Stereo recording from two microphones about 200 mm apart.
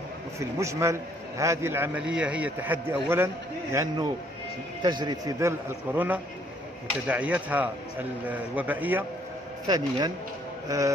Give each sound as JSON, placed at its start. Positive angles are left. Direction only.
{"t": 0.4, "sound": "a man's voice", "side_deg": -15}
{"t": 9.7, "sound": "a man's voice", "side_deg": -20}